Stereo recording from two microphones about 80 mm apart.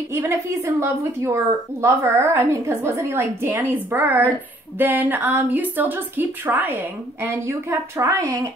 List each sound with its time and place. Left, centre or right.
0.1 s a woman's voice: right